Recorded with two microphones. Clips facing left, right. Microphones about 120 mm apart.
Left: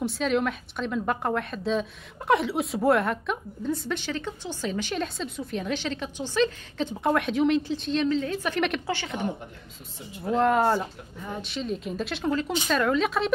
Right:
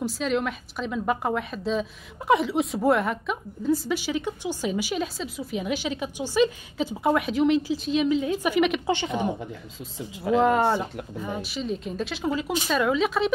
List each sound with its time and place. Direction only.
0.0 s a woman's voice: centre (ahead or behind)
8.8 s a woman's voice: 20° right (ahead or behind)
9.9 s speech: 90° right
10.3 s a woman's voice: centre (ahead or behind)